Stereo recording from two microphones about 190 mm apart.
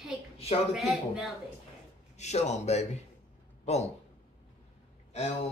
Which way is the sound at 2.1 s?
35° left (ahead or behind).